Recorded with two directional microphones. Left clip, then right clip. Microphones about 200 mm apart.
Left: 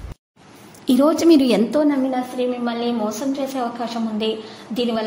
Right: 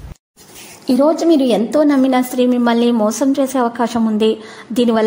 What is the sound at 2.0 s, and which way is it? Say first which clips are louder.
A woman's voice: right 7 dB; 45° right (ahead or behind).